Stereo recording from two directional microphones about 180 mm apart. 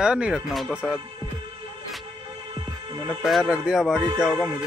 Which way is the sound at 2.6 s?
25° right (ahead or behind).